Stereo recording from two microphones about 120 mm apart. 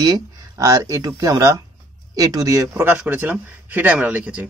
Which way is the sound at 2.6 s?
15° right (ahead or behind).